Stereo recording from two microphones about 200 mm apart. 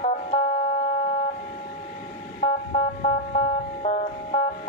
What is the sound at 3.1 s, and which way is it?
Music, 30° left (ahead or behind).